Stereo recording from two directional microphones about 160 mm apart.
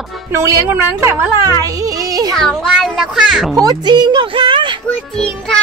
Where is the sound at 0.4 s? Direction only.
15° right (ahead or behind).